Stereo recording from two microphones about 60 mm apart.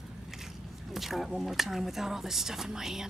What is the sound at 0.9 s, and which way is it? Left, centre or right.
Speech, centre.